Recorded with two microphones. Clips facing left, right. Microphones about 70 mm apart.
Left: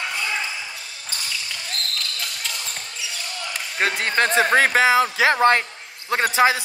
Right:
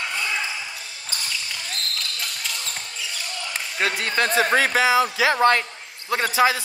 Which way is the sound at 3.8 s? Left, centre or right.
Left.